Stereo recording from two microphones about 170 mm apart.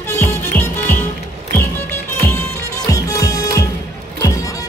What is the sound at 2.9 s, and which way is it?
Music, 20° left (ahead or behind).